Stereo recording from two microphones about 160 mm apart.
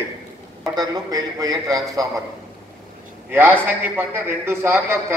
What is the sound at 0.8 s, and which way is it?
A man's voice, 25° right (ahead or behind).